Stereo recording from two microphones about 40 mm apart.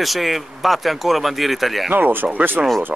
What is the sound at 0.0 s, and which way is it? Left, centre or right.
Speech, centre.